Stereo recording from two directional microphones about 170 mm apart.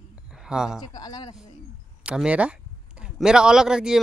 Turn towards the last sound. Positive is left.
turn(degrees=-5)  # may be behind; listen again after turning